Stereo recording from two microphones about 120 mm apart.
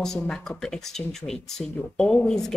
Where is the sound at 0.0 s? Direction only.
5° left (ahead or behind).